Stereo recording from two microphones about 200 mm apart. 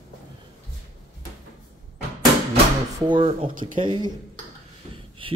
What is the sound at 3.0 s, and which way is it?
Speech, 25° right (ahead or behind).